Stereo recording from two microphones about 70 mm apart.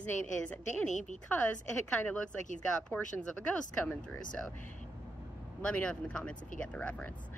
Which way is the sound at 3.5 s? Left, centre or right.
Centre.